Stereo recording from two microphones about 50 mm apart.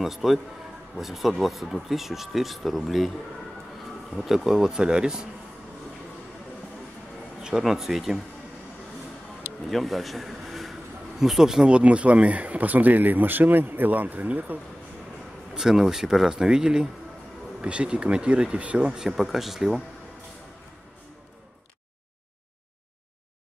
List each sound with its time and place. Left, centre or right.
0.0 s speech: centre
4.3 s speech: centre
7.4 s speech: centre
9.7 s speech: centre
11.6 s speech: right
15.5 s speech: centre
18.9 s speech: centre